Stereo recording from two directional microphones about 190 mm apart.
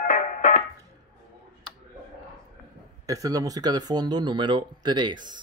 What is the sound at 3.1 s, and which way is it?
Speech, 20° right (ahead or behind).